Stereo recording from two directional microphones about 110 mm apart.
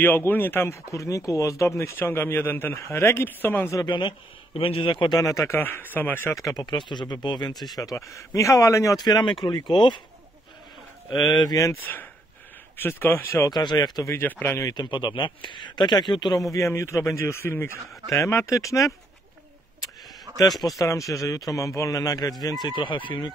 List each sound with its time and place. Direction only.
0.0 s speech: 15° left (ahead or behind)
3.8 s speech: 40° left (ahead or behind)
4.6 s speech: 55° left (ahead or behind)
5.2 s speech: 30° left (ahead or behind)
6.4 s speech: 40° left (ahead or behind)
11.1 s speech: 40° left (ahead or behind)
11.8 s speech: 15° left (ahead or behind)
13.5 s speech: 40° left (ahead or behind)
14.0 s speech: 25° left (ahead or behind)
14.7 s speech: 40° left (ahead or behind)
16.5 s speech: 25° left (ahead or behind)
20.6 s speech: 30° left (ahead or behind); by 23.3 s 45° left (ahead or behind)